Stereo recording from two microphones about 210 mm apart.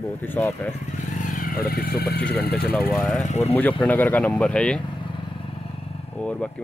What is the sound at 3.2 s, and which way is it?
Speech, 30° left (ahead or behind).